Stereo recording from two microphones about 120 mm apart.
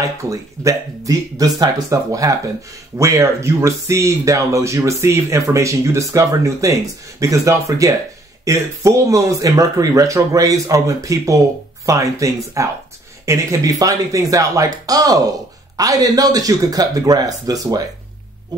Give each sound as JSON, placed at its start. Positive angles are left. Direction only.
{"t": 0.2, "sound": "speech", "side_deg": -25}